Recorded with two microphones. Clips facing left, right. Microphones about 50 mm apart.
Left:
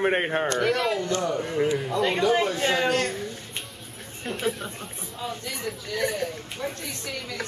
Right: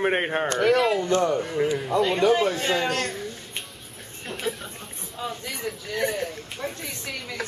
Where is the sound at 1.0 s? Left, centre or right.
Right.